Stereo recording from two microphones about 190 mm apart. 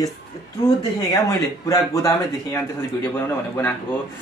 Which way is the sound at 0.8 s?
20° left (ahead or behind).